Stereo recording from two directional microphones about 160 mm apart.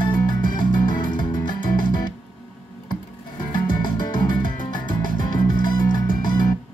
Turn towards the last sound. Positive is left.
turn(degrees=25)  # may be behind; listen again after turning